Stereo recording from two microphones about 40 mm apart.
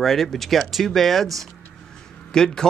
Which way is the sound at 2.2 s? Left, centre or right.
Centre.